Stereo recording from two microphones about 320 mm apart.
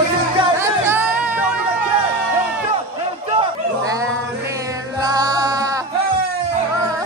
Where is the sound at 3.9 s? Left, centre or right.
Centre.